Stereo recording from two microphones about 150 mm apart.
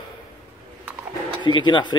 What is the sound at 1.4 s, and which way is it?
Speech, 30° left (ahead or behind).